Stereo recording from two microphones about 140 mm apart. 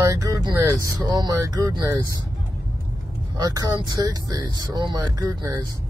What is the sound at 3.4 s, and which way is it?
Speech, 25° right (ahead or behind).